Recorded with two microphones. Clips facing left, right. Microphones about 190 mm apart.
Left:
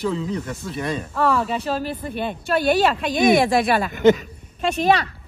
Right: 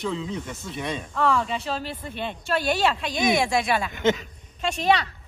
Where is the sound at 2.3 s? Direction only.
55° left (ahead or behind).